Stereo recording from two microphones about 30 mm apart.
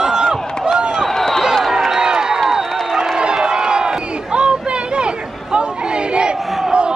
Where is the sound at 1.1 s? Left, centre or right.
Centre.